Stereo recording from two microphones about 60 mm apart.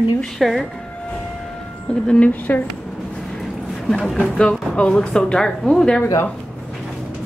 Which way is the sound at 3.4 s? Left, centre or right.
Centre.